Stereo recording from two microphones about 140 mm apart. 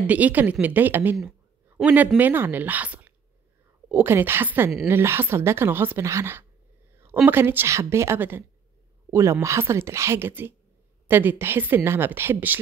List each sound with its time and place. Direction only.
0.0 s speech: 10° right (ahead or behind)